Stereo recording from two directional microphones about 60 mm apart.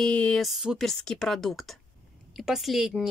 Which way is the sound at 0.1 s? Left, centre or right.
Left.